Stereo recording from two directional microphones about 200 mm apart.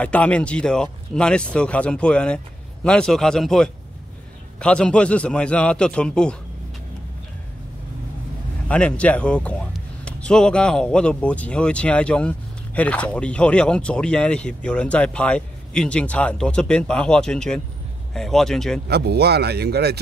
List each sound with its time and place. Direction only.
0.0 s speech: 5° left (ahead or behind)
8.6 s speech: 5° left (ahead or behind)
18.9 s speech: 55° right (ahead or behind)